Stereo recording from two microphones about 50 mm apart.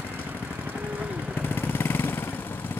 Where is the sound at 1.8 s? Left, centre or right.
Left.